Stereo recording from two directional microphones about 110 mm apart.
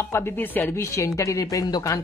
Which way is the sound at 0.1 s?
20° left (ahead or behind).